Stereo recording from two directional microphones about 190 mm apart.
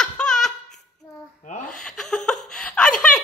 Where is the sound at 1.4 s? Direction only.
40° left (ahead or behind).